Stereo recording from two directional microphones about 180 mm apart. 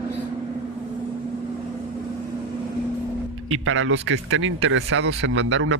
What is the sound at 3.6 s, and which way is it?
Speech, 90° right.